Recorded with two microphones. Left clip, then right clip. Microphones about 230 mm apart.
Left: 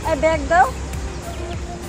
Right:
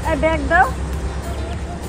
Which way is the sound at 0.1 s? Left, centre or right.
Centre.